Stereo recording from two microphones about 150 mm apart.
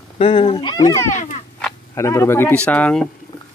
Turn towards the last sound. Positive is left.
turn(degrees=5)  # may be behind; listen again after turning